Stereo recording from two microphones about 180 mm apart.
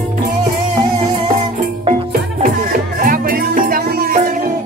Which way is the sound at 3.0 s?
50° right (ahead or behind).